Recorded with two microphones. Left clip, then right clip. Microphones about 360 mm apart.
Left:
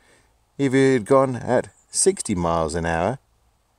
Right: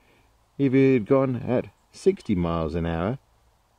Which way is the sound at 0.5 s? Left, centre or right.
Left.